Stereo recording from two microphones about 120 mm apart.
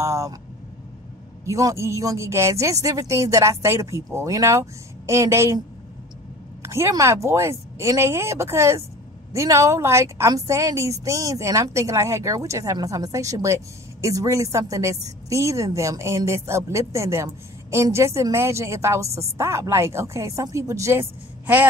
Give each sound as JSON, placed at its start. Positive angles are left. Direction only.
{"t": 0.0, "sound": "a woman's voice", "side_deg": -25}
{"t": 1.4, "sound": "a woman's voice", "side_deg": -25}
{"t": 6.6, "sound": "a woman's voice", "side_deg": -20}